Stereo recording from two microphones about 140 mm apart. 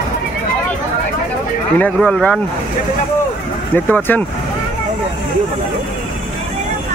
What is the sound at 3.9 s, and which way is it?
Speech, 10° left (ahead or behind).